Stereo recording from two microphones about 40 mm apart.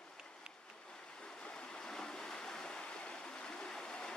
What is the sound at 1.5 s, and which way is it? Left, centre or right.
Stream, centre.